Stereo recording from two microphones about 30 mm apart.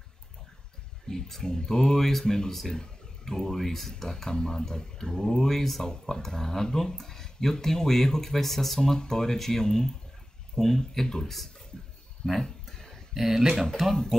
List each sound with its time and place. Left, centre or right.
1.0 s speech: centre
3.6 s speech: centre
5.9 s speech: left; by 8.8 s centre
8.8 s speech: centre
11.2 s speech: centre
12.3 s a sound: centre
13.1 s speech: centre
13.4 s speech: centre